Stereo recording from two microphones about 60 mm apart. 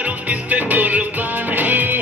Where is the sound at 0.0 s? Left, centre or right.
Right.